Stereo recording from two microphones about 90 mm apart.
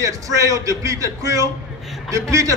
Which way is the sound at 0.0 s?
35° right (ahead or behind).